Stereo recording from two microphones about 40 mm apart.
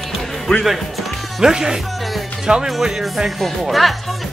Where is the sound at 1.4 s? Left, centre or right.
Centre.